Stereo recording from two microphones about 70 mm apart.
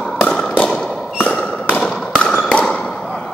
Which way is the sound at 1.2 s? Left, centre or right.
Centre.